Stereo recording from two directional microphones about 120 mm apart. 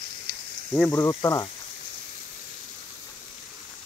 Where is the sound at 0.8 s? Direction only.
25° left (ahead or behind).